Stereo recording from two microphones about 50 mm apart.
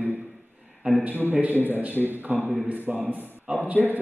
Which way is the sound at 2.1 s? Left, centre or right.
Right.